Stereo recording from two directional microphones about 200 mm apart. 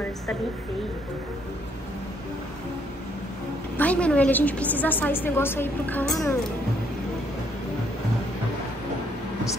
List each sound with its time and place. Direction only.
3.7 s a woman's voice: 5° left (ahead or behind)